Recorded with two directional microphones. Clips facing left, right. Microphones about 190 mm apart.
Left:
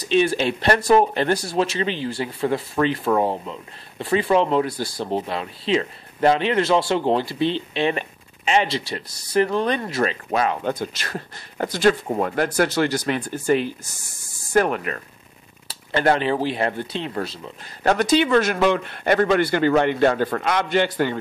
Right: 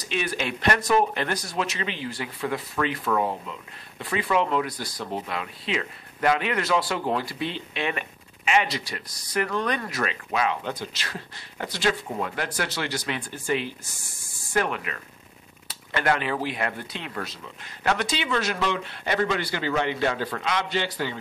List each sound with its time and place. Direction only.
0.1 s speech: 30° left (ahead or behind)
10.3 s speech: 45° left (ahead or behind)
15.7 s speech: 35° left (ahead or behind)
17.8 s speech: 40° left (ahead or behind)